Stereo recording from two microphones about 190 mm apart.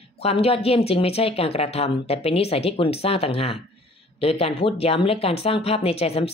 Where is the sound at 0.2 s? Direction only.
30° left (ahead or behind).